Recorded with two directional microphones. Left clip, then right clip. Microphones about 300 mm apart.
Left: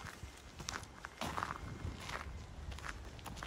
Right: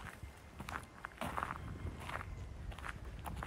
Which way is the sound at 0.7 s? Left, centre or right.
Centre.